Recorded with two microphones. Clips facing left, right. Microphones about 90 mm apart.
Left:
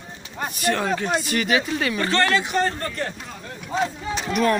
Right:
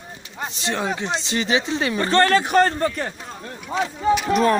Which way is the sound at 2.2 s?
40° right (ahead or behind).